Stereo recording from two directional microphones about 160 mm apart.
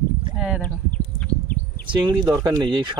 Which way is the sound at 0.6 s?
10° left (ahead or behind).